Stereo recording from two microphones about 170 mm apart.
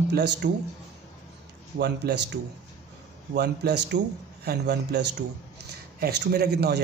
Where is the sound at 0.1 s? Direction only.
85° right.